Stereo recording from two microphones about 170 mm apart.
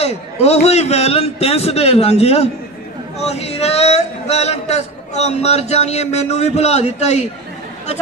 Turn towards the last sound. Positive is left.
turn(degrees=40)  # may be behind; listen again after turning